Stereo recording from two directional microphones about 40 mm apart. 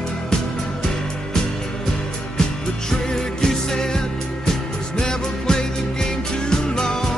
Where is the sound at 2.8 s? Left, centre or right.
Centre.